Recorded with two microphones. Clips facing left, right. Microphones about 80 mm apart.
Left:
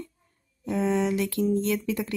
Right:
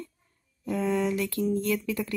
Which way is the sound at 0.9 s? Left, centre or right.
Left.